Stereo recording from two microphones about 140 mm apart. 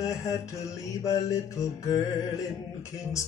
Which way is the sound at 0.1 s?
20° left (ahead or behind).